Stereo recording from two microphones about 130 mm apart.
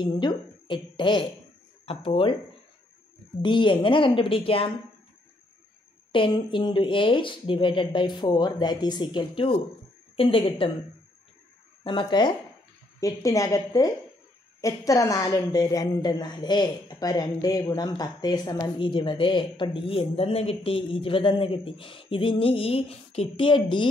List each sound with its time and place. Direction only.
0.0 s a woman's voice: 35° left (ahead or behind)
3.4 s a woman's voice: 40° left (ahead or behind)
6.1 s a woman's voice: 40° left (ahead or behind)
11.8 s a woman's voice: 40° left (ahead or behind)
13.0 s a woman's voice: 25° left (ahead or behind); by 23.9 s 40° left (ahead or behind)